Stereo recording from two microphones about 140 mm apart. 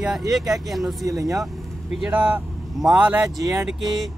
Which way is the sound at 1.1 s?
25° right (ahead or behind).